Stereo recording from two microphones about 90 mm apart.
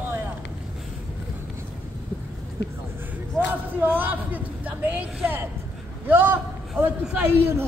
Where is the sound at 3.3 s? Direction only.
20° right (ahead or behind).